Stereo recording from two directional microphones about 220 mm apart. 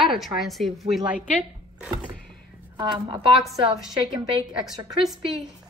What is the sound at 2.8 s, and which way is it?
Speech, 20° right (ahead or behind).